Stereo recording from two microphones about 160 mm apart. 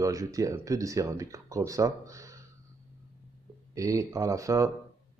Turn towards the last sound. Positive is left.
turn(degrees=-20)  # may be behind; listen again after turning